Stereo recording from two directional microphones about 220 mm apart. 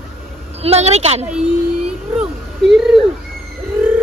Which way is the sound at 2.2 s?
Centre (ahead or behind).